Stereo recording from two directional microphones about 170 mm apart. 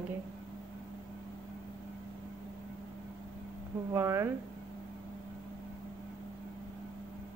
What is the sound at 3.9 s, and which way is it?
Speech, 15° right (ahead or behind).